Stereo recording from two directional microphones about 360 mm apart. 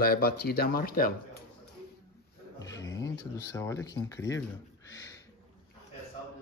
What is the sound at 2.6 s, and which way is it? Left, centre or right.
Speech, centre.